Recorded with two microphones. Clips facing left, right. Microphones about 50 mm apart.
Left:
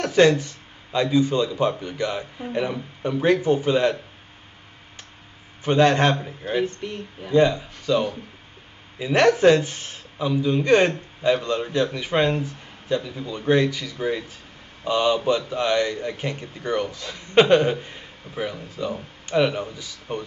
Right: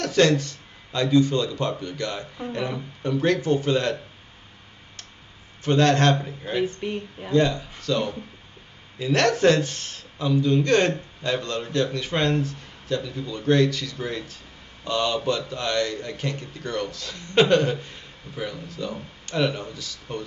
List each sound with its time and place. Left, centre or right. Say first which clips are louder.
0.0 s speech: left 3 dB; centre
5.6 s speech: left 2 dB; centre
6.6 s speech: right 1 dB; centre
7.2 s a man's voice: left 3 dB; centre